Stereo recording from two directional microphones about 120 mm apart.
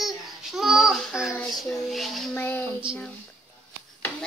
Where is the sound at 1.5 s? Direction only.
Centre (ahead or behind).